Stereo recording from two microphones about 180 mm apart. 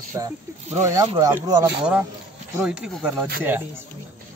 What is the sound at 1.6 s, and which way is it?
A man's voice, 10° right (ahead or behind).